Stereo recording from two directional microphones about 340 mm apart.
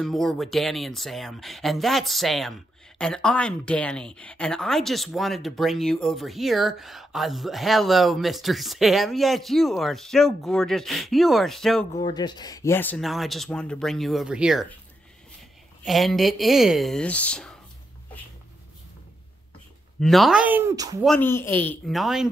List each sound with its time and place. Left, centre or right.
0.0 s speech: centre
11.9 s speech: centre
15.8 s speech: centre
20.0 s speech: centre
21.1 s speech: centre